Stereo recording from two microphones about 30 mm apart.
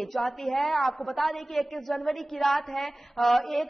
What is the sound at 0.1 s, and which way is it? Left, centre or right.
Speech, centre.